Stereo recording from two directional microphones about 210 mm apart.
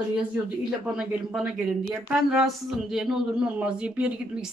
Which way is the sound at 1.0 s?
5° right (ahead or behind).